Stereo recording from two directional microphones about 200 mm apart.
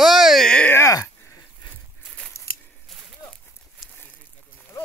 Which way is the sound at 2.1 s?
5° left (ahead or behind).